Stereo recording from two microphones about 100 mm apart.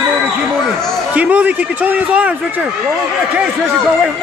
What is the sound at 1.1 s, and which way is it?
Speech, 15° right (ahead or behind).